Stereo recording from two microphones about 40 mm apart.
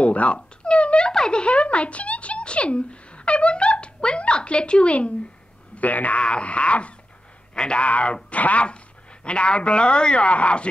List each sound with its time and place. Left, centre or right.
0.0 s cat: left
1.1 s speech: centre
5.8 s speech: left